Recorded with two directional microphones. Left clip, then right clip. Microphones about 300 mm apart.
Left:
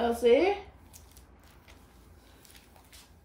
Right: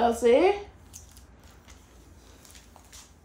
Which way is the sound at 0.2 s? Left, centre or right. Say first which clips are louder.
Right 1 dB; centre.